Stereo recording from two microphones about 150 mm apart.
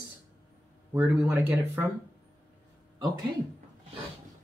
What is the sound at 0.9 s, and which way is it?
Speech, 10° right (ahead or behind).